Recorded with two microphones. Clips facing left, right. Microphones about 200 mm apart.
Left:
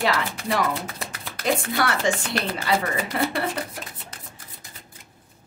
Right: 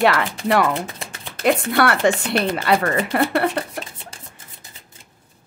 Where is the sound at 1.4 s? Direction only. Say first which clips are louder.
Right 6 dB; 60° right (ahead or behind).